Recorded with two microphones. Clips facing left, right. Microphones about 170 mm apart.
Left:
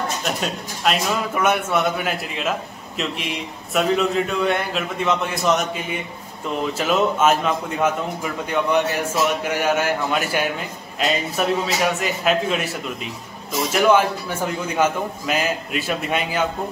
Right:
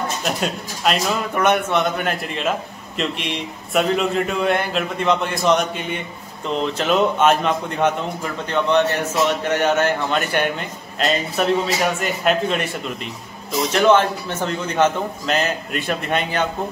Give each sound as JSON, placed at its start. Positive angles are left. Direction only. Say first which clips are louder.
{"t": 0.2, "sound": "a man's voice", "louder": "right 2 dB", "side_deg": 0}